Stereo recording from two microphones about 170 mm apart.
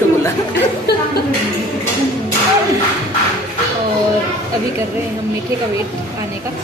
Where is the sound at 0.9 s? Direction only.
70° left (ahead or behind).